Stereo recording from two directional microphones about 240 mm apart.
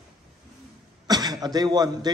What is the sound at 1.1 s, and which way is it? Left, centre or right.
A man's voice, centre.